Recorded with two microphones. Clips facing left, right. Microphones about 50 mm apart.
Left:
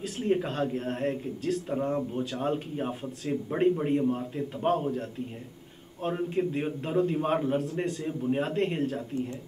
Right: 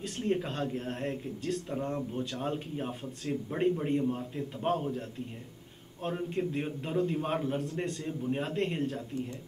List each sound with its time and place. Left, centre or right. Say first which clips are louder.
0.0 s a man's voice: left 4 dB; centre
6.0 s speech: left 4 dB; centre